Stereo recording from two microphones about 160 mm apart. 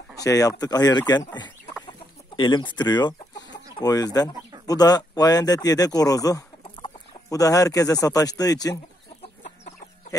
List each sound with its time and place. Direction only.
0.2 s speech: 20° left (ahead or behind)
1.9 s chicken: 30° left (ahead or behind)
3.7 s speech: 25° left (ahead or behind)